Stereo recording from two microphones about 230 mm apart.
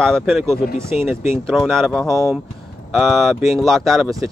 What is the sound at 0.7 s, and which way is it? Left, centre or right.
Speech, centre.